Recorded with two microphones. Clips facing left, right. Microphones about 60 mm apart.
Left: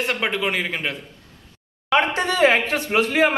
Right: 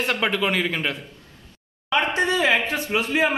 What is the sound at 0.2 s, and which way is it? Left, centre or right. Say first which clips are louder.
Speech: right 1 dB; left.